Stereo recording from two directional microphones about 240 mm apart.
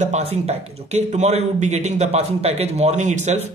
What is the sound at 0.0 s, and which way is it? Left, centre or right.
A man's voice, right.